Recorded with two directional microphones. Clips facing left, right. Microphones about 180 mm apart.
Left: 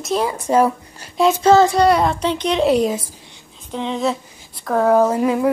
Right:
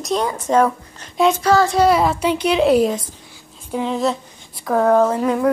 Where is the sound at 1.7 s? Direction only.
Centre (ahead or behind).